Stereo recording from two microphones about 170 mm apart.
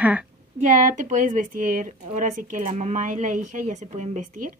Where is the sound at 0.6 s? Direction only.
50° right (ahead or behind).